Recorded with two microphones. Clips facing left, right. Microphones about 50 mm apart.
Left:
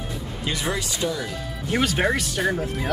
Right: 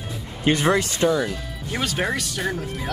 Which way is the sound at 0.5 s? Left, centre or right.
Right.